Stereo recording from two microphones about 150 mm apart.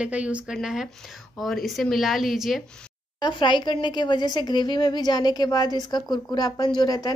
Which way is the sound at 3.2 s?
30° left (ahead or behind).